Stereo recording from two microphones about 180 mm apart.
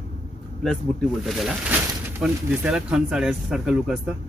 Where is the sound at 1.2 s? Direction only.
Centre (ahead or behind).